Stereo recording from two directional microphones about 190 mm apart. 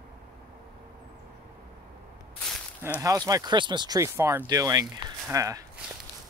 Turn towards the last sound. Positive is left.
turn(degrees=-15)  # may be behind; listen again after turning